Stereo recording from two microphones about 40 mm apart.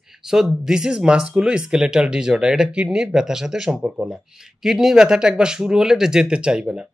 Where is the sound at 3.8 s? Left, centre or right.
Right.